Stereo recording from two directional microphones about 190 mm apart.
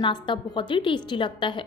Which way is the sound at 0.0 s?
25° left (ahead or behind).